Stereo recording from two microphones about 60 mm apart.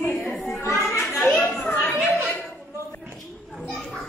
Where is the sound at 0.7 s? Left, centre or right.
Left.